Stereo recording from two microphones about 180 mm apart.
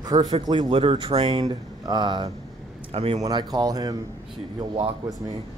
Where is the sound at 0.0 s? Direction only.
20° right (ahead or behind).